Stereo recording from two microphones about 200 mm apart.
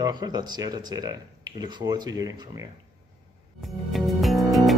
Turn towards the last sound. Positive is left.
turn(degrees=0)  # may be behind; listen again after turning